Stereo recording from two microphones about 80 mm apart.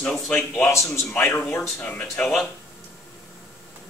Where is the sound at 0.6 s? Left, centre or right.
Left.